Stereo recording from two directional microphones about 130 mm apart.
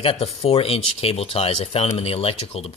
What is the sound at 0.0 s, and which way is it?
Speech, 45° left (ahead or behind).